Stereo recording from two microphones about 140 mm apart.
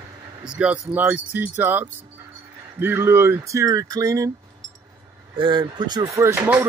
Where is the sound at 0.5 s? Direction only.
10° right (ahead or behind).